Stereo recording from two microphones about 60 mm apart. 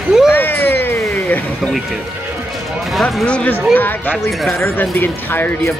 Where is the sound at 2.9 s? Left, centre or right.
Centre.